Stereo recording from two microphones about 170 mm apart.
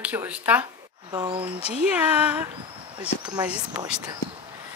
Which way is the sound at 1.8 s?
10° right (ahead or behind).